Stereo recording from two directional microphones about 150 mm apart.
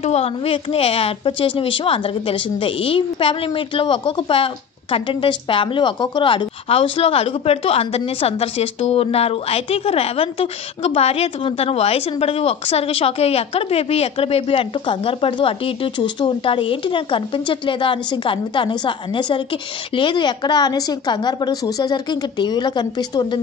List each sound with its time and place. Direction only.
0.0 s a woman's voice: 45° left (ahead or behind)